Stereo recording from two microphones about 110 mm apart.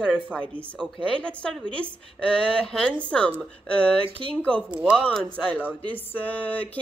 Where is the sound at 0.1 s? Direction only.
10° left (ahead or behind).